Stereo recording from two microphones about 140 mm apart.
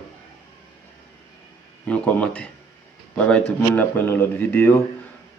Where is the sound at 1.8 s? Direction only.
10° left (ahead or behind).